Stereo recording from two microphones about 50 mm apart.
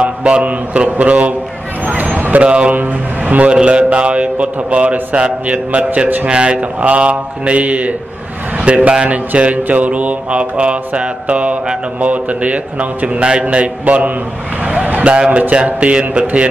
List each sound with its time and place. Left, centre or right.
0.0 s mantra: right
1.9 s a sound: right
2.7 s a man's voice: right
3.5 s mantra: right